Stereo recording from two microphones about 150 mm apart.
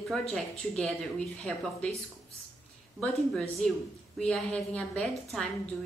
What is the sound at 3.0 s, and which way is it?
Speech, 5° left (ahead or behind).